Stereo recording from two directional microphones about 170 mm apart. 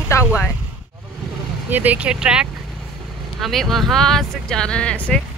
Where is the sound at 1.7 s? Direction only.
10° right (ahead or behind); by 5.2 s 5° left (ahead or behind).